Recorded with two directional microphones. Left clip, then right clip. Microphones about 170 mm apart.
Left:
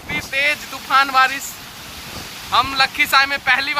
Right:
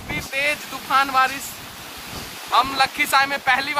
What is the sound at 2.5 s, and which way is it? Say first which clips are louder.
Speech: left 2 dB; 10° right (ahead or behind).